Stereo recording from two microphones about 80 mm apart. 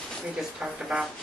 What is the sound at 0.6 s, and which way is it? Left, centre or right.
Speech, centre.